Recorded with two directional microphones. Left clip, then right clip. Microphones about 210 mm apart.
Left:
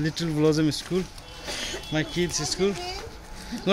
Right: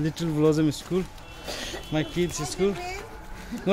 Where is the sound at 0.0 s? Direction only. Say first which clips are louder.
Even; 5° right (ahead or behind).